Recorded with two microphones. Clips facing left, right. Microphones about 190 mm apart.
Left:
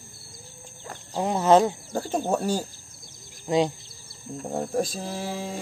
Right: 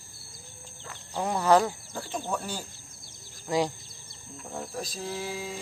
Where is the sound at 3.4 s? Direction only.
20° left (ahead or behind).